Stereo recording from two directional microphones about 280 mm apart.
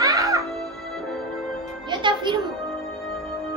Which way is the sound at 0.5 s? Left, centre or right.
Centre.